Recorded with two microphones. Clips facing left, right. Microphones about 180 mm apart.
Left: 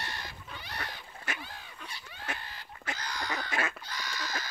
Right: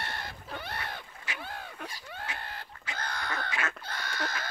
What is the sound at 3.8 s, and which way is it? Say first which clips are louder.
Fowl: right 3 dB; 55° right (ahead or behind).